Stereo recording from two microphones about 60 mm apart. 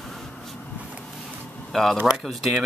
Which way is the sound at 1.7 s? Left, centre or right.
Centre.